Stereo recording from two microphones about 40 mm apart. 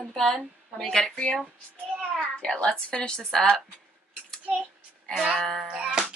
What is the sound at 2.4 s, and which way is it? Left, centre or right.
A woman's voice, left.